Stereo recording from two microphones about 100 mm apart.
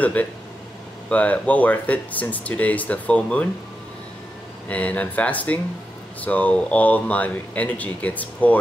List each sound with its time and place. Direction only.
0.0 s speech: 15° left (ahead or behind)
4.6 s speech: 15° left (ahead or behind)